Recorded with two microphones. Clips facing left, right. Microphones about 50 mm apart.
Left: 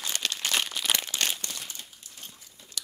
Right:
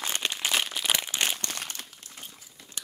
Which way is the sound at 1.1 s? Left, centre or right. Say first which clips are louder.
Right 1 dB; right.